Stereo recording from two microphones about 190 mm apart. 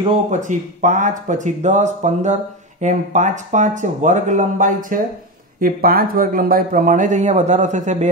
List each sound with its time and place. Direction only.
0.3 s speech: 40° right (ahead or behind)